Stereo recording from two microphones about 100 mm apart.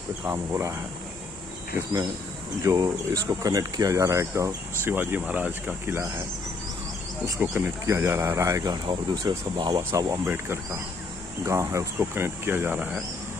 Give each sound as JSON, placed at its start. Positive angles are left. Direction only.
{"t": 0.3, "sound": "speech", "side_deg": -30}
{"t": 1.8, "sound": "speech", "side_deg": -30}
{"t": 4.9, "sound": "speech", "side_deg": -20}
{"t": 7.8, "sound": "speech", "side_deg": -25}
{"t": 9.2, "sound": "speech", "side_deg": -45}
{"t": 9.9, "sound": "speech", "side_deg": -30}